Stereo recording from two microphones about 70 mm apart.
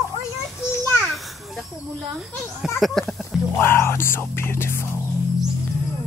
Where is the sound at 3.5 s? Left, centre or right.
Left.